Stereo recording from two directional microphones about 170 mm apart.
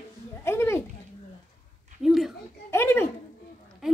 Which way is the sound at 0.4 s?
15° left (ahead or behind).